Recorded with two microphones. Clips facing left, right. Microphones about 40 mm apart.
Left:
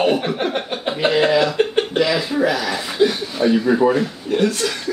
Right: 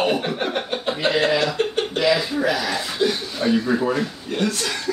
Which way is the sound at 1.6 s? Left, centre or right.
Left.